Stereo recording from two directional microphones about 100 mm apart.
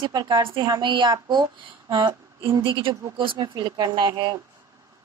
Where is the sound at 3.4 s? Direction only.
45° right (ahead or behind).